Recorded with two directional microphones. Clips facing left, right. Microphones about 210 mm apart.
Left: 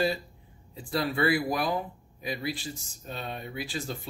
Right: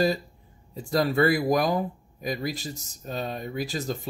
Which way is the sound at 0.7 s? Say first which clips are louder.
Right 6 dB; 40° right (ahead or behind).